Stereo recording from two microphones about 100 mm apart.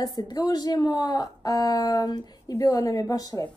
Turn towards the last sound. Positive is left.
turn(degrees=40)  # may be behind; listen again after turning